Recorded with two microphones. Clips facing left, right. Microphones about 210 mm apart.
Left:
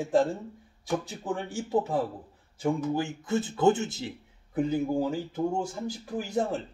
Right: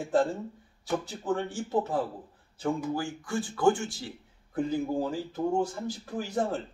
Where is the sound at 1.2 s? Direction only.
10° left (ahead or behind).